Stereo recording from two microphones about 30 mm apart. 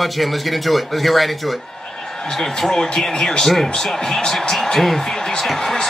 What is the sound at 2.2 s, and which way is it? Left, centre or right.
Speech, centre.